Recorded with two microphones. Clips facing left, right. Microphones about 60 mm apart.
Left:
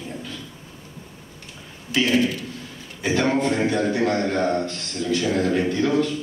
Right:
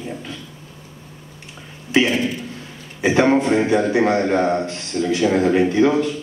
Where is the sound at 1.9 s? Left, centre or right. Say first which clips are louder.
Right 2 dB; right.